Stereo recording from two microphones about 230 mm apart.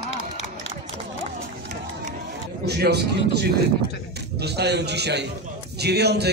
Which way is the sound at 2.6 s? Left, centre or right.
Right.